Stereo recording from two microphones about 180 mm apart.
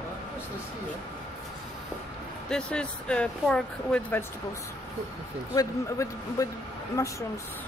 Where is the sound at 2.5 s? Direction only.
5° left (ahead or behind).